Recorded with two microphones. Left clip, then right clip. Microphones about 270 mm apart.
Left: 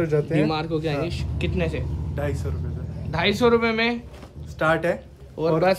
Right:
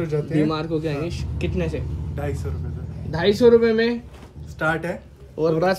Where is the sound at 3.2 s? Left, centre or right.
Centre.